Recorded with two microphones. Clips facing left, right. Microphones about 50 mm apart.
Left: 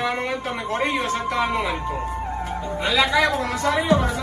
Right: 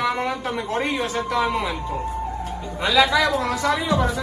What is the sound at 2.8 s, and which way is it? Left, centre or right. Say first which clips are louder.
A man's voice: right 2 dB; left.